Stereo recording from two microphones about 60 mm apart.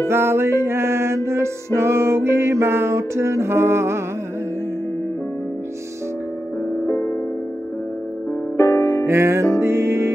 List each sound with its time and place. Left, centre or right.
0.1 s music: right
6.9 s music: left
8.5 s music: left
9.0 s music: right